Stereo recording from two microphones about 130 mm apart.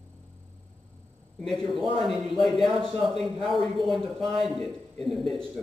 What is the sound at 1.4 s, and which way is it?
Speech, centre (ahead or behind).